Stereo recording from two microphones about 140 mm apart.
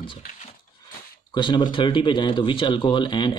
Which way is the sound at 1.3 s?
30° left (ahead or behind).